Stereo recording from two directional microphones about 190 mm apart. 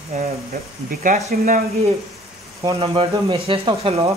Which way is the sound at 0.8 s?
45° right (ahead or behind).